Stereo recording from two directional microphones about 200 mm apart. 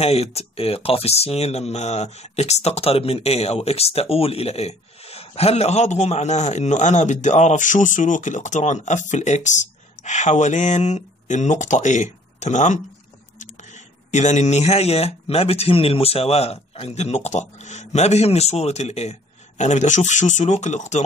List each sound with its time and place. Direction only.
0.0 s speech: 30° left (ahead or behind)